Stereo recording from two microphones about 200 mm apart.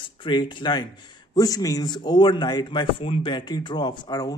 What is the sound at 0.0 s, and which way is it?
Speech, 25° left (ahead or behind).